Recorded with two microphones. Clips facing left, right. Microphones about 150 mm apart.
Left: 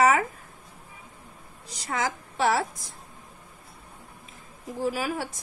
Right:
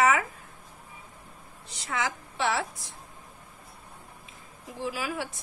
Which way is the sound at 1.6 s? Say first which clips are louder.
Left 2 dB; 40° left (ahead or behind).